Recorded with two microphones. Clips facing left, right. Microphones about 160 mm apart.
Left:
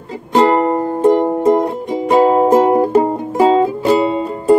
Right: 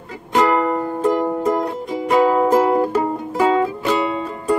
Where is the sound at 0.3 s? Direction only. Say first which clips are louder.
Left 4 dB; 30° left (ahead or behind).